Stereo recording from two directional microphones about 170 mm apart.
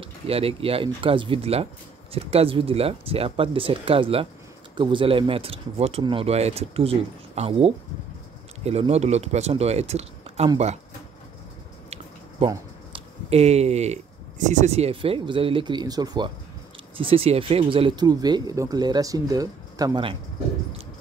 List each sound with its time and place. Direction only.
0.0 s speech: 35° right (ahead or behind)
12.4 s speech: 35° right (ahead or behind)